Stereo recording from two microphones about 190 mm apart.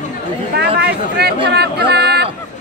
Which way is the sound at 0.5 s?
60° right (ahead or behind).